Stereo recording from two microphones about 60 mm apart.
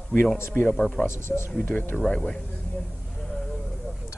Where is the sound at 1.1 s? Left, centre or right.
Left.